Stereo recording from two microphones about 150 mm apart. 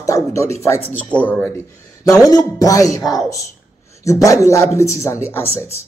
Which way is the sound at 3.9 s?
20° left (ahead or behind).